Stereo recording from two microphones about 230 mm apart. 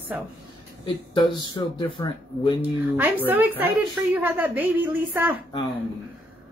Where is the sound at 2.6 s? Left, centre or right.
Centre.